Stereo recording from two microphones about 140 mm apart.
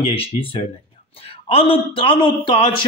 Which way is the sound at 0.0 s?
40° left (ahead or behind).